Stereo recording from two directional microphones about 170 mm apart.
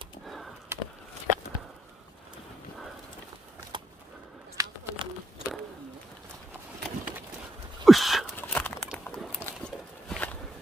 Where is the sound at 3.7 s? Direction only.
25° right (ahead or behind).